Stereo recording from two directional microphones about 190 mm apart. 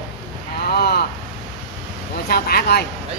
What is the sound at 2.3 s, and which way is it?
Speech, 55° left (ahead or behind).